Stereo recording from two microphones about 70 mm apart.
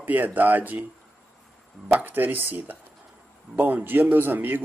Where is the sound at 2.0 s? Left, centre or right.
Right.